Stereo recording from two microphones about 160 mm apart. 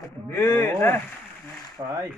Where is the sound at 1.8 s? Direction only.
25° right (ahead or behind).